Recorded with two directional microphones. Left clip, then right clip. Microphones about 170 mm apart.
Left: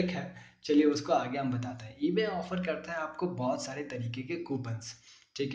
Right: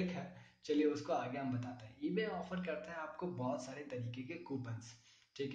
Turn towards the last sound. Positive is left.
turn(degrees=25)  # may be behind; listen again after turning